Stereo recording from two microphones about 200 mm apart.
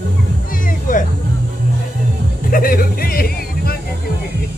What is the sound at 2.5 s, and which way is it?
Music, 45° left (ahead or behind).